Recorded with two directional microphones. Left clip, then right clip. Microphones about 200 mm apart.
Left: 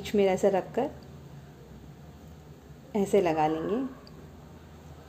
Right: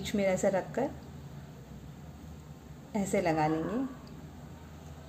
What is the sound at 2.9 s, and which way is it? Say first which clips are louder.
Speech: left 5 dB; 25° left (ahead or behind).